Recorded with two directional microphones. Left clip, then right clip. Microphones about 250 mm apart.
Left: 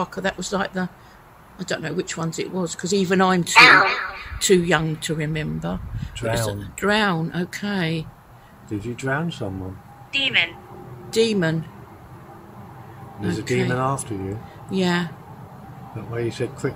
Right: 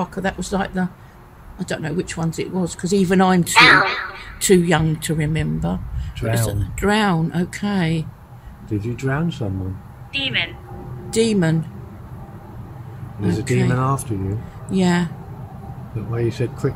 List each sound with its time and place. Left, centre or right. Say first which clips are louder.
0.0 s speech: right 1 dB; centre
3.5 s speech: even; centre
4.4 s speech: right 2 dB; centre
8.8 s speech: left 1 dB; centre
10.1 s a woman's voice: left 2 dB; left
11.1 s speech: right 1 dB; centre
13.2 s speech: right 2 dB; centre
13.7 s speech: right 1 dB; centre
14.7 s speech: right 2 dB; centre
16.1 s speech: right 2 dB; centre